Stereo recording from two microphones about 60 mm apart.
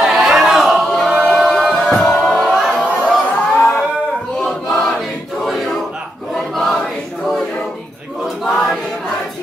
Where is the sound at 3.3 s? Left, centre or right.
Left.